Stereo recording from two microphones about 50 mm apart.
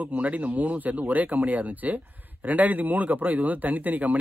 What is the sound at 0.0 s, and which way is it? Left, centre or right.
A man's voice, right.